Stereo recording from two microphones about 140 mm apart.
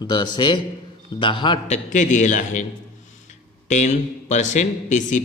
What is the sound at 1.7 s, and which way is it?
Speech, 65° left (ahead or behind).